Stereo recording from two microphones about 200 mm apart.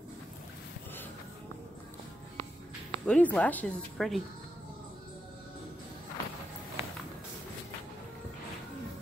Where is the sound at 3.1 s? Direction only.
5° left (ahead or behind).